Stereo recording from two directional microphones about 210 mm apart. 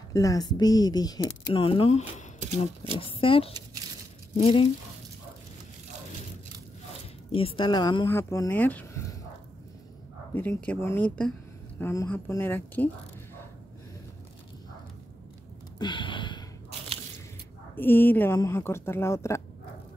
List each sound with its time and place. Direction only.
0.1 s speech: 15° left (ahead or behind)
2.4 s speech: 25° right (ahead or behind)
3.1 s speech: 25° left (ahead or behind)
7.3 s speech: 25° left (ahead or behind); by 9.0 s 10° left (ahead or behind)
10.3 s speech: 10° left (ahead or behind)
15.8 s gasp: 20° left (ahead or behind)
17.7 s speech: 10° left (ahead or behind)